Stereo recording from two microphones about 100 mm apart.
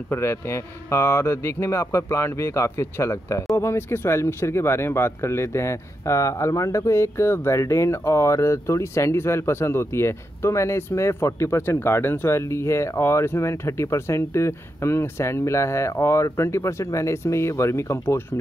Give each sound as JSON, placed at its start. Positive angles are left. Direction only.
{"t": 0.1, "sound": "speech", "side_deg": 25}